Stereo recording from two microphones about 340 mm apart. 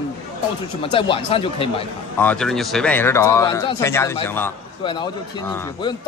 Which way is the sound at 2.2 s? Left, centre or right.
Centre.